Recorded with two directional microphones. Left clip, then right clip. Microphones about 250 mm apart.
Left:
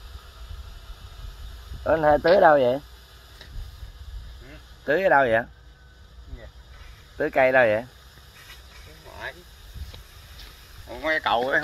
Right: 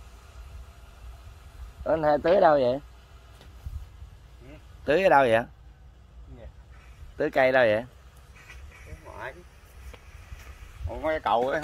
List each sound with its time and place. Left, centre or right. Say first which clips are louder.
1.9 s speech: left 4 dB; centre
4.8 s speech: left 1 dB; centre
7.2 s speech: left 3 dB; centre
10.9 s speech: left 2 dB; right